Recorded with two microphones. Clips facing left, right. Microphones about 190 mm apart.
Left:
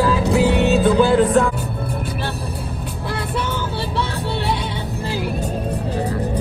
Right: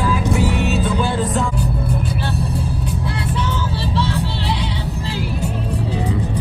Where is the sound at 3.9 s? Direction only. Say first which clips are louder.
Right 6 dB; 55° left (ahead or behind).